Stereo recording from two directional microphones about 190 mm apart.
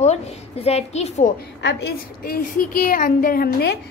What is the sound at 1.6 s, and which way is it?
A woman's voice, 65° left (ahead or behind).